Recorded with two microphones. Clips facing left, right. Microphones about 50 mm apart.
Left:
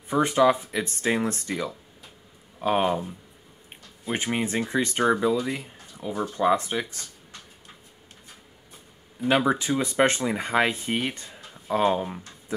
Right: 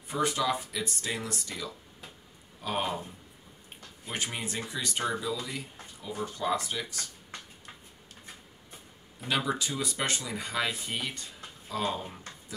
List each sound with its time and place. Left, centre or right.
0.1 s speech: left
4.1 s speech: left
9.2 s speech: left